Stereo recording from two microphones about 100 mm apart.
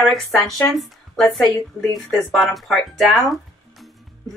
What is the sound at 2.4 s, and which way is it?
Speech, centre (ahead or behind).